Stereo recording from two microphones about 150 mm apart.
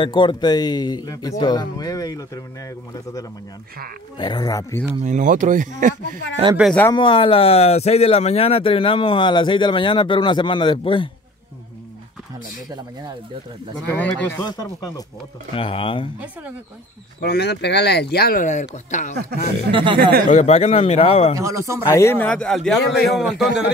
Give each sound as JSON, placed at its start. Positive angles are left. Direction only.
{"t": 0.0, "sound": "speech", "side_deg": 30}
{"t": 4.2, "sound": "speech", "side_deg": 30}
{"t": 5.0, "sound": "speech", "side_deg": -55}
{"t": 6.9, "sound": "speech", "side_deg": 35}
{"t": 13.8, "sound": "speech", "side_deg": 15}
{"t": 14.4, "sound": "speech", "side_deg": 25}
{"t": 15.5, "sound": "speech", "side_deg": 35}
{"t": 17.2, "sound": "speech", "side_deg": 90}
{"t": 19.1, "sound": "speech", "side_deg": -90}
{"t": 19.7, "sound": "speech", "side_deg": -35}
{"t": 20.0, "sound": "speech", "side_deg": -90}
{"t": 20.2, "sound": "a man's voice", "side_deg": 50}
{"t": 21.4, "sound": "speech", "side_deg": -20}
{"t": 21.8, "sound": "a man's voice", "side_deg": 15}